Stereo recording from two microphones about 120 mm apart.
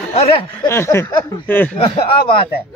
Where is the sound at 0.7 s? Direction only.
20° left (ahead or behind).